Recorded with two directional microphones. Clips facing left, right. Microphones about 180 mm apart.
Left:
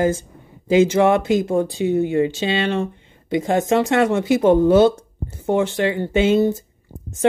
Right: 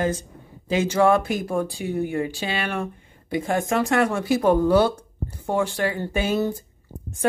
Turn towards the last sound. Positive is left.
turn(degrees=25)  # may be behind; listen again after turning